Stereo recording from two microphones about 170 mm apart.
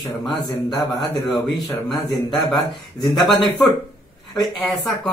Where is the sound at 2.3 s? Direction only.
Centre (ahead or behind).